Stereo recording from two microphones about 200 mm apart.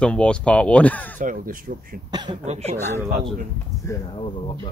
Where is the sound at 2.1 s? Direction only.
20° right (ahead or behind).